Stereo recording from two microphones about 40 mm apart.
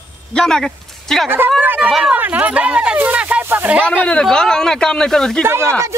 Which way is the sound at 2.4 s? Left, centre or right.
Right.